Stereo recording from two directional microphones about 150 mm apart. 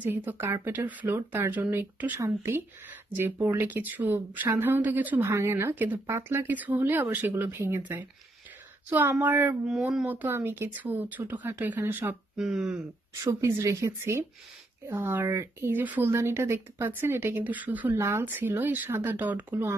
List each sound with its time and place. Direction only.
0.0 s speech: 10° right (ahead or behind)
13.1 s speech: 20° right (ahead or behind)